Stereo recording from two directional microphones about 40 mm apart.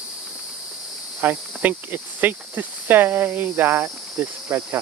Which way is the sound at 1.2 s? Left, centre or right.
Right.